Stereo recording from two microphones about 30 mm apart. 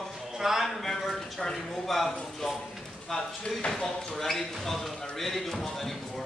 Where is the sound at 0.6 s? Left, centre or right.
Centre.